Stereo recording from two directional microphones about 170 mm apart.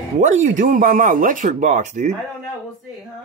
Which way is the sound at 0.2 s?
45° right (ahead or behind).